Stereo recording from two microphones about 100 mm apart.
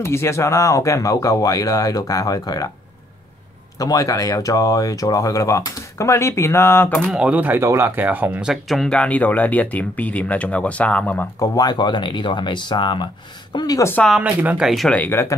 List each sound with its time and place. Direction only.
0.0 s speech: 25° left (ahead or behind)
3.8 s speech: 35° left (ahead or behind)
7.2 s speech: 15° right (ahead or behind); by 11.2 s 15° left (ahead or behind)
11.3 s speech: 35° left (ahead or behind)
14.0 s speech: 5° right (ahead or behind)
14.9 s speech: 20° left (ahead or behind)